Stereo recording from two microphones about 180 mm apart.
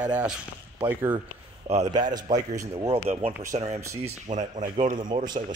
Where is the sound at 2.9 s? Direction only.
35° right (ahead or behind).